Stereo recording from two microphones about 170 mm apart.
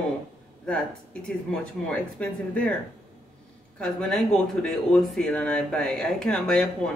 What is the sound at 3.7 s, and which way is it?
Speech, 5° left (ahead or behind).